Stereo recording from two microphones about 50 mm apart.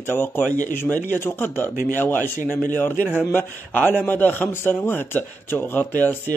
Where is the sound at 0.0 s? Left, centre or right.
Left.